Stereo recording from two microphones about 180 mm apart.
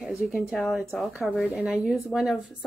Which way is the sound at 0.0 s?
Centre (ahead or behind).